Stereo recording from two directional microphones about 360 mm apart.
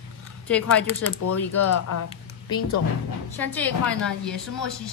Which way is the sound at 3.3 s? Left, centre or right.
Centre.